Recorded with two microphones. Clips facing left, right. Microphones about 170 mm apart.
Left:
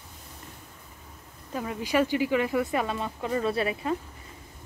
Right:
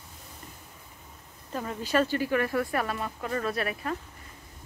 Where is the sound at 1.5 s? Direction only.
5° left (ahead or behind); by 3.9 s 25° left (ahead or behind).